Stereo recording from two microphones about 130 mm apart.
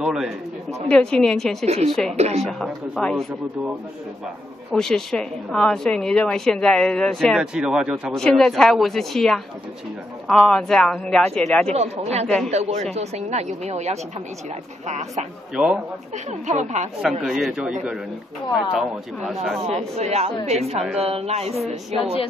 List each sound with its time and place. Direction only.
0.0 s a woman's voice: 5° right (ahead or behind)
0.8 s a woman's voice: 5° left (ahead or behind)
1.7 s speech: 55° right (ahead or behind)
2.4 s a woman's voice: 5° left (ahead or behind)
4.7 s a woman's voice: 5° left (ahead or behind)
8.2 s a woman's voice: 5° left (ahead or behind)
11.7 s speech: 55° right (ahead or behind)
15.5 s a woman's voice: 5° right (ahead or behind)
16.4 s speech: 65° right (ahead or behind)
17.2 s a woman's voice: centre (ahead or behind)
19.6 s speech: 55° right (ahead or behind)